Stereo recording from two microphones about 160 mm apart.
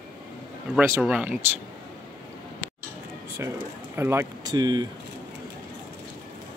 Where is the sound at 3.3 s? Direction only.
15° right (ahead or behind).